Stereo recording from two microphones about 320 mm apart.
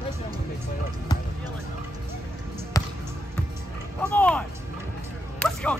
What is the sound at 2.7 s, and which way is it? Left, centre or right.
Basketball bounce, centre.